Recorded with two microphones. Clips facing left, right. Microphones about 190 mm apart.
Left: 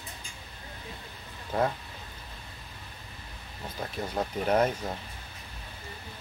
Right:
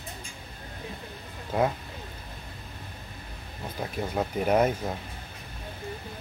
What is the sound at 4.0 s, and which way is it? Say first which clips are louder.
Speech: right 3 dB; 10° right (ahead or behind).